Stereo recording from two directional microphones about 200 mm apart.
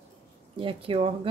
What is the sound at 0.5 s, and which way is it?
Speech, 25° right (ahead or behind).